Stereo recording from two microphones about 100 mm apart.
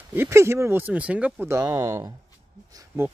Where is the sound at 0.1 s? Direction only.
25° right (ahead or behind).